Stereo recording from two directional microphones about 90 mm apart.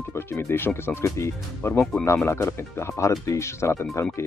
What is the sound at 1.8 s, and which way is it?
Speech, 10° left (ahead or behind).